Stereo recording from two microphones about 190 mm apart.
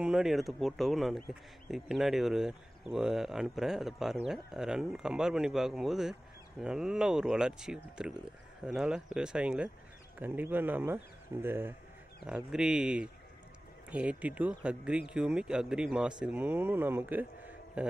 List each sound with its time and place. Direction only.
0.0 s speech: 5° right (ahead or behind)